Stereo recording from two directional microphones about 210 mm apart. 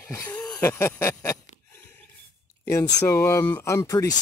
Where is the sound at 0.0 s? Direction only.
15° left (ahead or behind).